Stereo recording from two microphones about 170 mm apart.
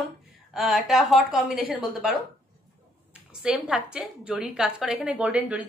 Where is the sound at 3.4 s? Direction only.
5° right (ahead or behind).